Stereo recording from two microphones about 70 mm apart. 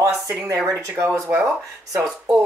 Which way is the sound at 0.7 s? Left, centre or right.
Right.